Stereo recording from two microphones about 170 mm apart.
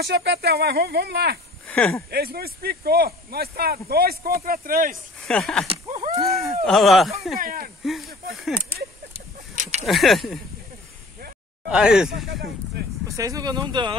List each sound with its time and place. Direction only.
0.0 s speech: 80° right
1.7 s speech: 10° left (ahead or behind)
2.0 s speech: 65° right (ahead or behind)
5.2 s speech: 5° left (ahead or behind)
5.9 s a sound: 35° right (ahead or behind)
6.2 s speech: centre (ahead or behind)
7.3 s speech: 55° right (ahead or behind)
7.8 s speech: centre (ahead or behind)
9.6 s a sound: 40° right (ahead or behind)
9.8 s speech: centre (ahead or behind)
11.7 s speech: 5° right (ahead or behind)
12.3 s speech: 70° right (ahead or behind)
13.1 s speech: 20° right (ahead or behind)